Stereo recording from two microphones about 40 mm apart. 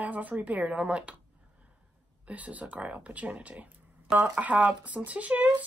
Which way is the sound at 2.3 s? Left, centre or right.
Right.